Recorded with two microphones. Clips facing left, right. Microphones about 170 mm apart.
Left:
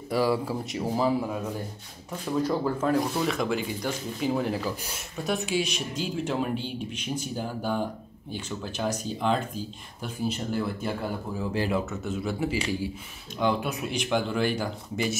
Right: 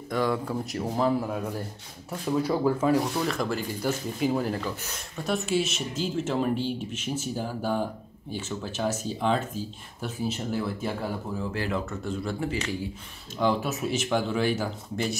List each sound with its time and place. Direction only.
0.1 s speech: 10° left (ahead or behind)
2.0 s speech: 10° right (ahead or behind)
11.5 s speech: 15° left (ahead or behind)
11.8 s speech: 5° left (ahead or behind)
13.4 s speech: centre (ahead or behind)